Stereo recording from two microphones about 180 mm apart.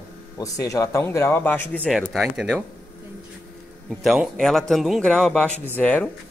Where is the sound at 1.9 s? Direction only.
Centre (ahead or behind).